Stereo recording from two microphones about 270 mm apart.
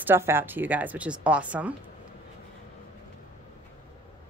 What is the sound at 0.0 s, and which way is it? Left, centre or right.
Speech, centre.